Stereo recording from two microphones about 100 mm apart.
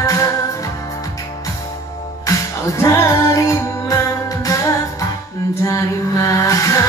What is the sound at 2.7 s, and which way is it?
Music, 30° left (ahead or behind).